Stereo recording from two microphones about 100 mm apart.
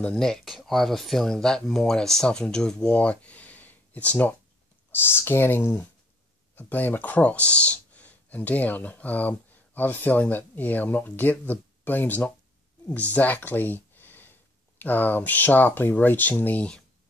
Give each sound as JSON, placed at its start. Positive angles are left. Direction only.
{"t": 0.0, "sound": "speech", "side_deg": 5}